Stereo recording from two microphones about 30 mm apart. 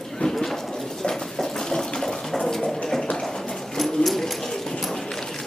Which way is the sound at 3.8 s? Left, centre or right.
Centre.